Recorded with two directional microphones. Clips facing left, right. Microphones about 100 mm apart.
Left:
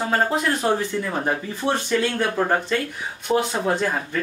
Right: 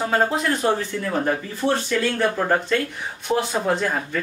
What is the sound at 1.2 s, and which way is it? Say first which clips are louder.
Speech: right 1 dB; 20° left (ahead or behind).